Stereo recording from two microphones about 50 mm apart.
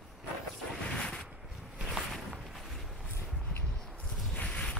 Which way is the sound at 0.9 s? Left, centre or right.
Centre.